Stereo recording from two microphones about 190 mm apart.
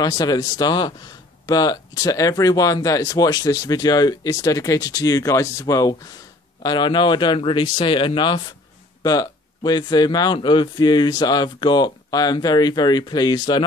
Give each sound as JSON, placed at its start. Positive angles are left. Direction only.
{"t": 0.0, "sound": "speech", "side_deg": 20}